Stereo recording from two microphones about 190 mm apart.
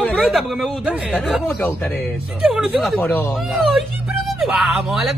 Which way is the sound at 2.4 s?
Centre (ahead or behind).